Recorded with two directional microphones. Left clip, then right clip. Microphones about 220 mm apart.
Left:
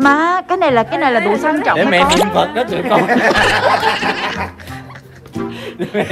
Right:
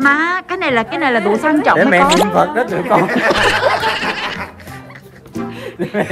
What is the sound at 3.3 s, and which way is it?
Snicker, centre (ahead or behind).